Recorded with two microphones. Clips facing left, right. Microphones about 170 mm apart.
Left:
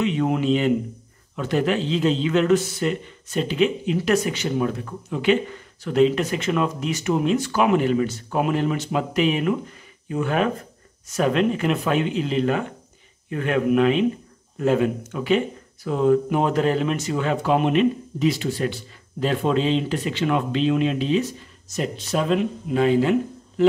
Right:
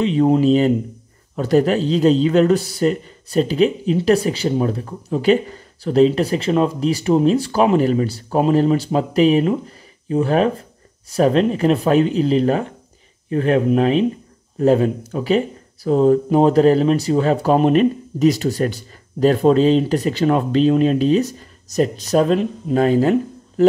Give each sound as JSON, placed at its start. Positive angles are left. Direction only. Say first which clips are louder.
{"t": 0.0, "sound": "speech", "louder": "right 7 dB", "side_deg": -35}